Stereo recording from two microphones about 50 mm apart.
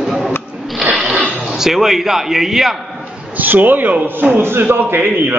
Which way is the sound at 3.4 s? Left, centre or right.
Right.